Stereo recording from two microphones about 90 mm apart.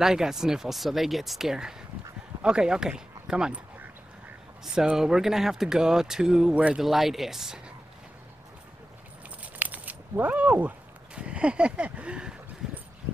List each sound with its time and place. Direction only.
0.0 s speech: 5° right (ahead or behind)
4.7 s speech: 5° right (ahead or behind)
6.8 s speech: centre (ahead or behind)
9.4 s a sound: 15° right (ahead or behind)